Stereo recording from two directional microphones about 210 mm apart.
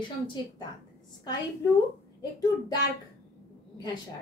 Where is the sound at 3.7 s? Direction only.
20° left (ahead or behind).